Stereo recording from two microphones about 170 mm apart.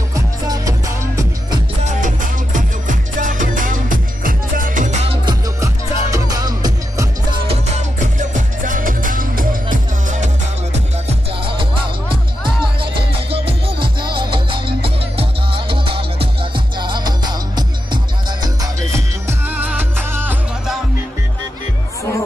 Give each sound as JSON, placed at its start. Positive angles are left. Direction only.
{"t": 0.1, "sound": "music", "side_deg": -20}
{"t": 1.9, "sound": "music", "side_deg": -50}
{"t": 5.0, "sound": "music", "side_deg": -35}
{"t": 5.6, "sound": "music", "side_deg": -20}
{"t": 8.0, "sound": "music", "side_deg": -50}
{"t": 13.3, "sound": "music", "side_deg": -30}